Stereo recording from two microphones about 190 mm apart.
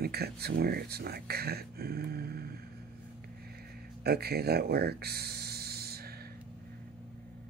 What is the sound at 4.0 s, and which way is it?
Speech, 55° right (ahead or behind).